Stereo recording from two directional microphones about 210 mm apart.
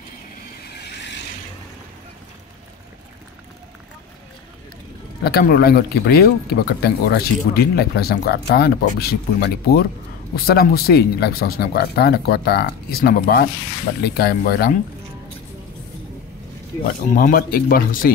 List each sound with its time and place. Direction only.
0.7 s vehicle: 50° left (ahead or behind)
5.2 s speech: 45° left (ahead or behind)
17.1 s speech: 40° left (ahead or behind)